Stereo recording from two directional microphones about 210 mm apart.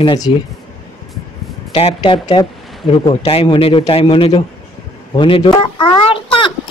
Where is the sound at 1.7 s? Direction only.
25° left (ahead or behind).